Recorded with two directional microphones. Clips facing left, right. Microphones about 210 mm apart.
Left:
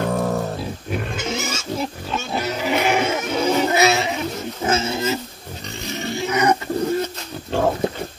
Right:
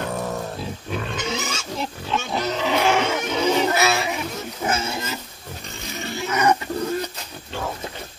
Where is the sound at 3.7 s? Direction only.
20° left (ahead or behind).